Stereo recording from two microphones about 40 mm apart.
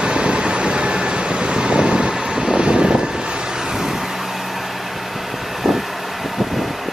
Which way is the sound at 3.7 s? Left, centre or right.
Centre.